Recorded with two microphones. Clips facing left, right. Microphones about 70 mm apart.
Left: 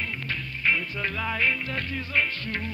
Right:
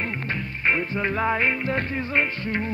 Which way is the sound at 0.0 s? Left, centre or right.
Right.